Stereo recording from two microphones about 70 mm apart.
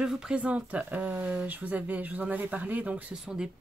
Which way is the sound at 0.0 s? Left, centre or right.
Centre.